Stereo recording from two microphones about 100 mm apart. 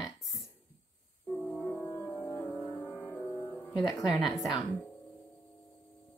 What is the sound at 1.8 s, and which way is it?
Music, 25° left (ahead or behind).